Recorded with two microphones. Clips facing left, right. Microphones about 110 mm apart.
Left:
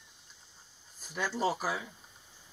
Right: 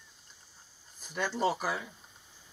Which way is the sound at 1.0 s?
Centre (ahead or behind).